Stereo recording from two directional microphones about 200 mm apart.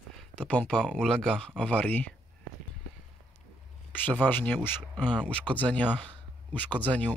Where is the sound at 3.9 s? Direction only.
10° left (ahead or behind).